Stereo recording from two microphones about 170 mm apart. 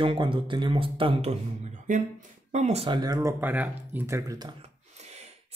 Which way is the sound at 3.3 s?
10° right (ahead or behind).